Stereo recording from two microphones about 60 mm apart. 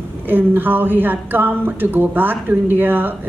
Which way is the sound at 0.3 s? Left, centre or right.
Right.